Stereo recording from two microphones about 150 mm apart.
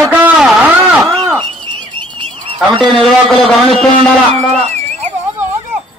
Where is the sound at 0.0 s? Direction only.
10° right (ahead or behind).